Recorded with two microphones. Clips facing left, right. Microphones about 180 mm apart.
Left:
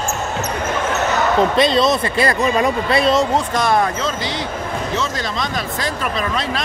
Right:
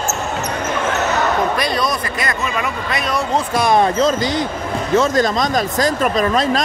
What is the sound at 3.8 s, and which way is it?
Speech, 35° right (ahead or behind).